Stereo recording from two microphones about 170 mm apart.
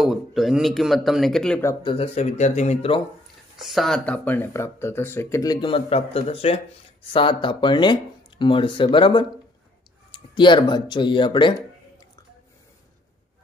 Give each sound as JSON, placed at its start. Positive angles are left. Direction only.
{"t": 0.0, "sound": "speech", "side_deg": 0}
{"t": 1.8, "sound": "speech", "side_deg": 30}
{"t": 3.5, "sound": "speech", "side_deg": 0}
{"t": 10.3, "sound": "speech", "side_deg": 25}